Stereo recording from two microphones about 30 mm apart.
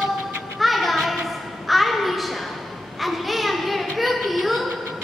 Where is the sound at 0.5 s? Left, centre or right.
Centre.